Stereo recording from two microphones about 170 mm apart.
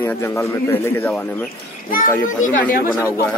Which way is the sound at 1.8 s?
55° left (ahead or behind).